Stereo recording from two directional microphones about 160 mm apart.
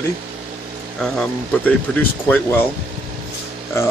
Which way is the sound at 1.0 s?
5° left (ahead or behind).